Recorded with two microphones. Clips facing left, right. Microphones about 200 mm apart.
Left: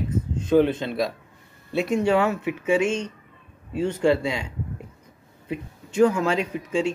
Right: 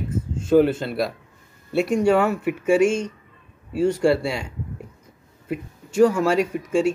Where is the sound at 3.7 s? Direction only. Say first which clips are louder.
Right 2 dB; 10° right (ahead or behind).